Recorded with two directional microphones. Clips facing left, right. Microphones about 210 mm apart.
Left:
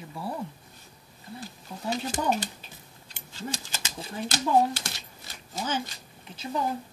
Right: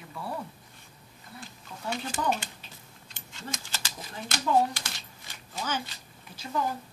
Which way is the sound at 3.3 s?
35° left (ahead or behind).